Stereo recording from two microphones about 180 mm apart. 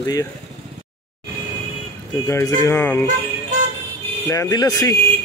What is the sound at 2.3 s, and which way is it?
Speech, 15° left (ahead or behind).